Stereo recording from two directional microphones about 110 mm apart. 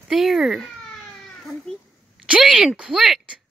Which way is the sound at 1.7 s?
5° left (ahead or behind).